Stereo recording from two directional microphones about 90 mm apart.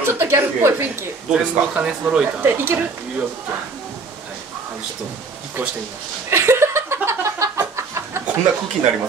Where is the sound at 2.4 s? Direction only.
25° right (ahead or behind).